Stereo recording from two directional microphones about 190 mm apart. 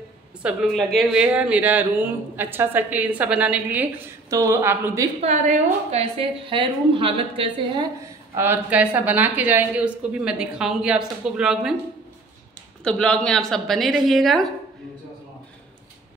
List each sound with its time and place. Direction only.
0.4 s a woman's voice: 5° right (ahead or behind)
5.2 s a woman's voice: 40° right (ahead or behind)
8.4 s a woman's voice: 10° right (ahead or behind)
12.8 s a woman's voice: 5° left (ahead or behind)